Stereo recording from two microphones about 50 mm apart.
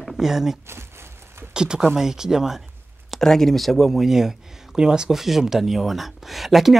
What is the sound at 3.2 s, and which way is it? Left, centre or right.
Speech, centre.